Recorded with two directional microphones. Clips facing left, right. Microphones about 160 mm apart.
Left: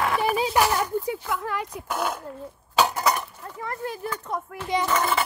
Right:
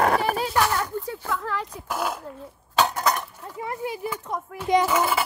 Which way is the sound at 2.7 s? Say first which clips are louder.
Even; 5° left (ahead or behind).